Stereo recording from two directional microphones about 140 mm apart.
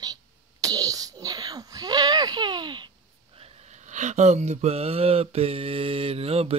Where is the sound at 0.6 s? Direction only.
25° right (ahead or behind).